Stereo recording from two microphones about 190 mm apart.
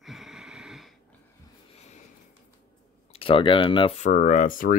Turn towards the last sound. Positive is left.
turn(degrees=45)  # may be behind; listen again after turning